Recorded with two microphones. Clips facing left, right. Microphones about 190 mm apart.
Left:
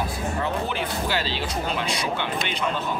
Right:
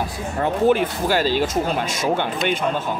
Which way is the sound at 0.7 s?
45° right (ahead or behind).